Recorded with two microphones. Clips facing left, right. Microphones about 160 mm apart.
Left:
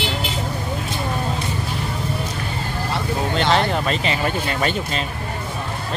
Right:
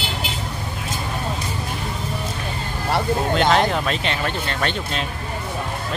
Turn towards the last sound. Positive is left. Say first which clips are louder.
# left 2 dB
turn(degrees=5)  # may be behind; listen again after turning